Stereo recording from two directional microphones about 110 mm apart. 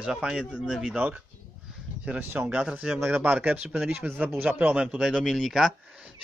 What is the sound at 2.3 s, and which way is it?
Speech, 20° right (ahead or behind).